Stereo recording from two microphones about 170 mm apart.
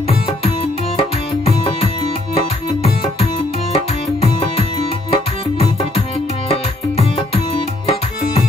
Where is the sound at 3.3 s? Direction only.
35° left (ahead or behind).